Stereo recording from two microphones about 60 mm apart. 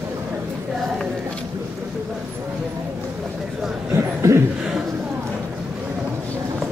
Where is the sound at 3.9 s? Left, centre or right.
Right.